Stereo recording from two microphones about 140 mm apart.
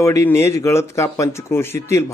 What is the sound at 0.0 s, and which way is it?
A man's voice, 20° left (ahead or behind).